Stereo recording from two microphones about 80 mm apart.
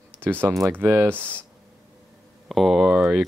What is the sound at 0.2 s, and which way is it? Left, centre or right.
Speech, right.